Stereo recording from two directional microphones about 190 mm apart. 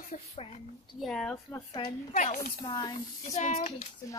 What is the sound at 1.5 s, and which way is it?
Speech, 20° left (ahead or behind).